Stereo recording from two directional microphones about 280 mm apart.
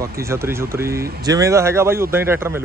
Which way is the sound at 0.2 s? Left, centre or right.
Centre.